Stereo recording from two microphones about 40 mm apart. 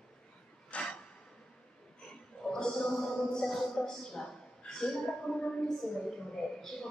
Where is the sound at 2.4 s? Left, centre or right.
Centre.